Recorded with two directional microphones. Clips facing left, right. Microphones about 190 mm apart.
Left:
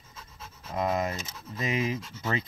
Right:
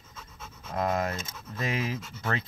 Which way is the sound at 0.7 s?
Centre (ahead or behind).